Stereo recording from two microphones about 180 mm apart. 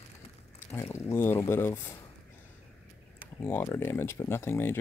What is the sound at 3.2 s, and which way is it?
Speech, 10° left (ahead or behind).